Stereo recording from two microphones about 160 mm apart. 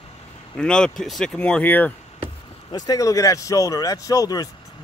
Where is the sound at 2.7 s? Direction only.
25° left (ahead or behind).